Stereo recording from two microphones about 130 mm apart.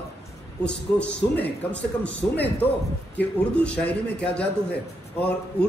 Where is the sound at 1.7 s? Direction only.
10° left (ahead or behind).